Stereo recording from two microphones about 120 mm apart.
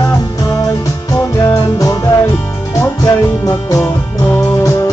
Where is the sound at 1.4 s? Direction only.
25° left (ahead or behind).